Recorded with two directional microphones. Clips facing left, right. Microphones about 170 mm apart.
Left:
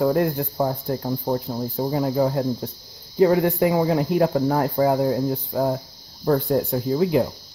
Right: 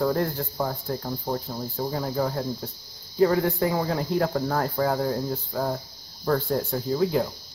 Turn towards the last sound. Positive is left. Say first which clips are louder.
# left 4 dB
turn(degrees=15)  # may be behind; listen again after turning